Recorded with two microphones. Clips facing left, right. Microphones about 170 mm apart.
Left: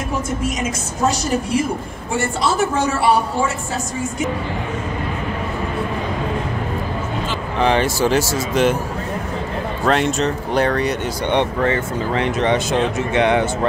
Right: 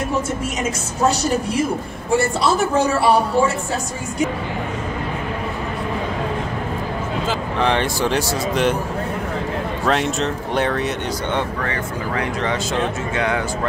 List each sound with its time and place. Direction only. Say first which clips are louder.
0.6 s a woman's voice: right 1 dB; 35° right (ahead or behind)
7.5 s speech: left 4 dB; centre (ahead or behind)
9.8 s speech: left 3 dB; centre (ahead or behind)
11.6 s speech: left 5 dB; 25° left (ahead or behind)